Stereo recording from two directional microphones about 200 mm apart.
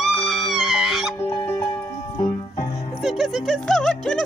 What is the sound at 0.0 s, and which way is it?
Music, centre (ahead or behind).